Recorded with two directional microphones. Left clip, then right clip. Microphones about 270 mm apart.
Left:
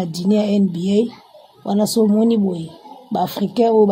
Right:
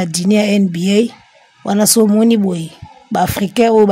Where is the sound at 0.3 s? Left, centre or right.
Right.